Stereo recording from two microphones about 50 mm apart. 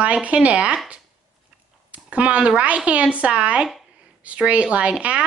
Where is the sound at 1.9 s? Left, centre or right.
Right.